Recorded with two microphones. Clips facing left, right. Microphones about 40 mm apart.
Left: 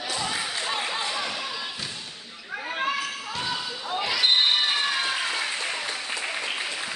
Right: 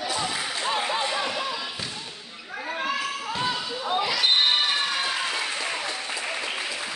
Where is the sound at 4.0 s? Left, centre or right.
Centre.